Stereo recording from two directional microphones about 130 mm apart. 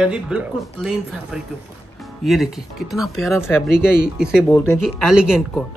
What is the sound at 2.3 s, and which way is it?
Speech, centre (ahead or behind).